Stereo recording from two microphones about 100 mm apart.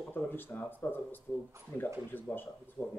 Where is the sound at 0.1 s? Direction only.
20° left (ahead or behind).